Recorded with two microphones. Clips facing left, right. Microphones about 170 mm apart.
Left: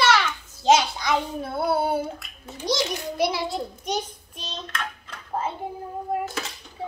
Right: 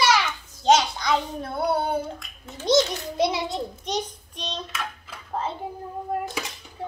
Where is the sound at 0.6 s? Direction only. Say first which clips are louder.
Even; 5° left (ahead or behind).